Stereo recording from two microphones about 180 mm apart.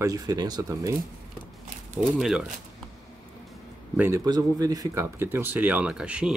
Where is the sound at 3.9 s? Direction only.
15° right (ahead or behind).